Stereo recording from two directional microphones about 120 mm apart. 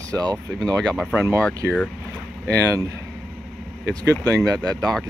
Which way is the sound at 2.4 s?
25° right (ahead or behind).